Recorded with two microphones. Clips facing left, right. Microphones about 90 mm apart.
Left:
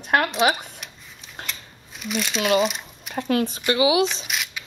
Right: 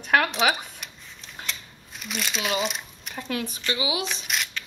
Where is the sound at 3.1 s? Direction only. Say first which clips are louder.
Left 8 dB; 50° left (ahead or behind).